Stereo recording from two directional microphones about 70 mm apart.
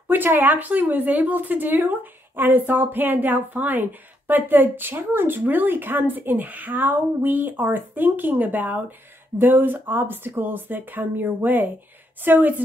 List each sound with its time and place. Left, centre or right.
0.1 s speech: right